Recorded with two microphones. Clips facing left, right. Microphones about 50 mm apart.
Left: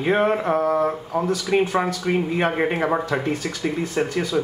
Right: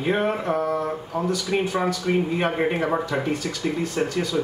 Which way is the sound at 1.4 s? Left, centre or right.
Left.